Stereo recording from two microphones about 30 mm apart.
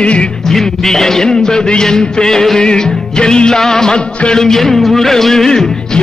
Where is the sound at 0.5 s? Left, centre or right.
Centre.